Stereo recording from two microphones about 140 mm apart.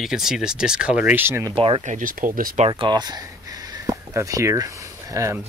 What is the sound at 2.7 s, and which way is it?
Speech, 30° right (ahead or behind).